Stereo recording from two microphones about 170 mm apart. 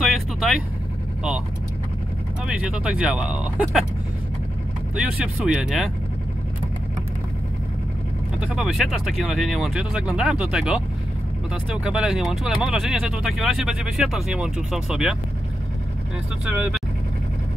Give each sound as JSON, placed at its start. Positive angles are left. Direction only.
{"t": 0.0, "sound": "vehicle", "side_deg": 0}
{"t": 2.4, "sound": "speech", "side_deg": -5}
{"t": 4.9, "sound": "speech", "side_deg": -5}
{"t": 8.4, "sound": "speech", "side_deg": -5}
{"t": 16.4, "sound": "speech", "side_deg": -5}